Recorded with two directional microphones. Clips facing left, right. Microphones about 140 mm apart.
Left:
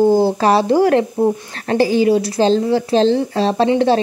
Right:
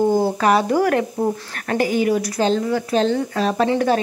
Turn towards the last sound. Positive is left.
turn(degrees=25)  # may be behind; listen again after turning